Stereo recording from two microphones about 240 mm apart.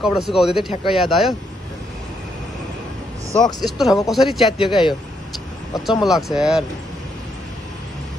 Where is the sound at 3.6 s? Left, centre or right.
Centre.